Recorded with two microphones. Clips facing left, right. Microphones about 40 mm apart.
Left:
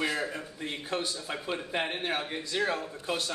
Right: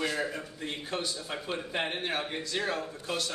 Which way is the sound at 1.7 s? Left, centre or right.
Centre.